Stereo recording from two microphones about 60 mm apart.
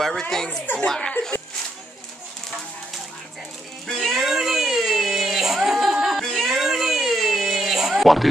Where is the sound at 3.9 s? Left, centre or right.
Centre.